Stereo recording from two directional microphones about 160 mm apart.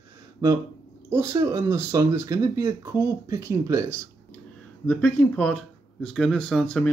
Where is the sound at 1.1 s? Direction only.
20° right (ahead or behind).